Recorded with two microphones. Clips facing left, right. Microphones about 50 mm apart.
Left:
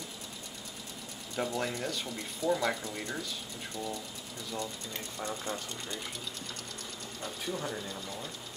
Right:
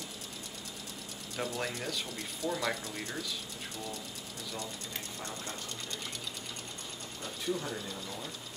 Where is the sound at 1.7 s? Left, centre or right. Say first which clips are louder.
Left 2 dB; centre.